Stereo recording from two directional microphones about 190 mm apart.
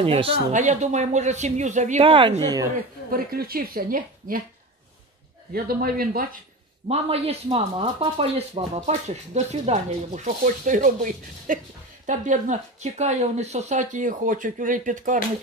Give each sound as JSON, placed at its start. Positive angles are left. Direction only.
{"t": 0.0, "sound": "speech", "side_deg": -30}
{"t": 3.1, "sound": "a woman's voice", "side_deg": -50}
{"t": 5.5, "sound": "a woman's voice", "side_deg": -50}
{"t": 6.9, "sound": "speech", "side_deg": -30}